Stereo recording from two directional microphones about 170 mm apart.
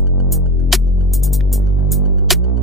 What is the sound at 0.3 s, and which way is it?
Music, centre (ahead or behind).